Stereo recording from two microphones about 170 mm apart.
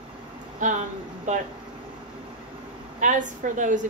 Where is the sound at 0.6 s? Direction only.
45° right (ahead or behind).